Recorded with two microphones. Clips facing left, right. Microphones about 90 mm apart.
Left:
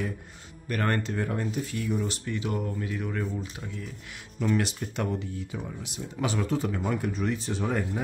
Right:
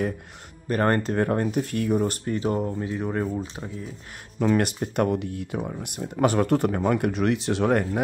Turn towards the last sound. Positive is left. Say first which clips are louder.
# right 7 dB
turn(degrees=-70)  # may be behind; listen again after turning